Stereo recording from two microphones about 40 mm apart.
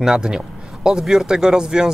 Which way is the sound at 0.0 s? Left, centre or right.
Centre.